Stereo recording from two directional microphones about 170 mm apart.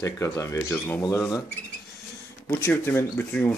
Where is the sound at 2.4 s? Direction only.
15° left (ahead or behind).